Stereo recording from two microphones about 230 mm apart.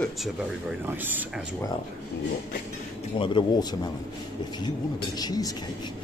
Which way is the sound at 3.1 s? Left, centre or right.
Left.